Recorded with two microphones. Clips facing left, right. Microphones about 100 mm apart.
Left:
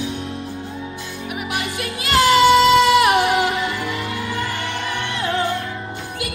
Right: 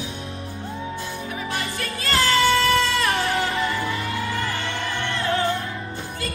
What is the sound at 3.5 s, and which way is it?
Music, 85° left.